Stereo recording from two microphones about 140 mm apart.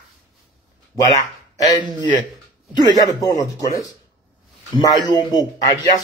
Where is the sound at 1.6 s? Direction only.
30° left (ahead or behind).